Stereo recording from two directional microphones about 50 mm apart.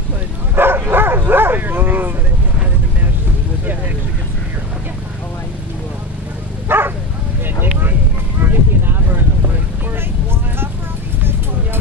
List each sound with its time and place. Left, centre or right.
0.6 s bow-wow: right
6.7 s bow-wow: right
8.4 s a sound: right